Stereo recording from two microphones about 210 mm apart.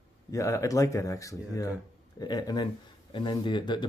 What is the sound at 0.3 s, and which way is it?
Speech, 15° left (ahead or behind).